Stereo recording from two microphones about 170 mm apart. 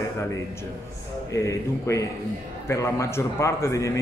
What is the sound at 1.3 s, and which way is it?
Speech, 15° left (ahead or behind).